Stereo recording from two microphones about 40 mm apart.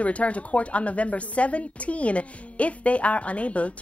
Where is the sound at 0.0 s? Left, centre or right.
Left.